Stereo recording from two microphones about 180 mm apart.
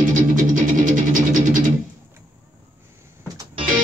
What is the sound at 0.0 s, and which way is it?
Music, 45° right (ahead or behind).